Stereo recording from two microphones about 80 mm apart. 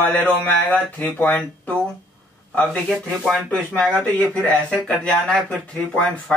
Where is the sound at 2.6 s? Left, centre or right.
Centre.